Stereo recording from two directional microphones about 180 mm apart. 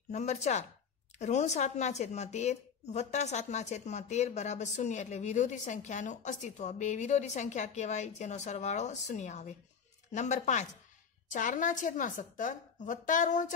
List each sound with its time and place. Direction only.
0.1 s a woman's voice: 40° left (ahead or behind)